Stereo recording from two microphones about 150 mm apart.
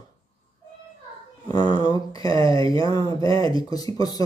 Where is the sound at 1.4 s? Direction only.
25° left (ahead or behind).